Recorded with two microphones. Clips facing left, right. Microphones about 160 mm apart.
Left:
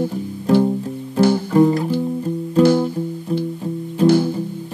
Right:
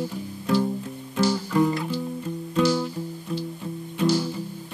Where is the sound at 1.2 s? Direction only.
55° left (ahead or behind).